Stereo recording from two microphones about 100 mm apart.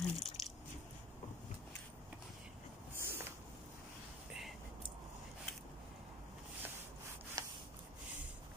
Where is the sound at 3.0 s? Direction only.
25° right (ahead or behind).